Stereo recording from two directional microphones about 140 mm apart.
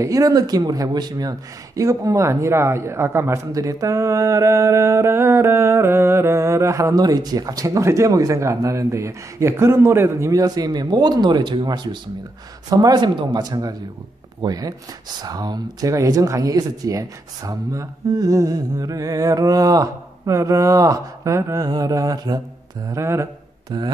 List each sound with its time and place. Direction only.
0.0 s speech: 25° right (ahead or behind)
23.7 s speech: 30° right (ahead or behind)